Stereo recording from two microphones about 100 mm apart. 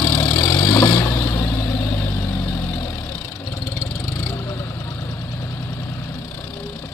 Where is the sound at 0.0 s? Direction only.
35° left (ahead or behind).